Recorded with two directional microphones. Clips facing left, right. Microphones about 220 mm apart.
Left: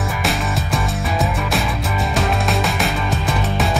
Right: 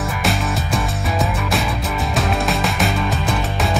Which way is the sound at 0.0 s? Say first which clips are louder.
Right 1 dB; centre (ahead or behind).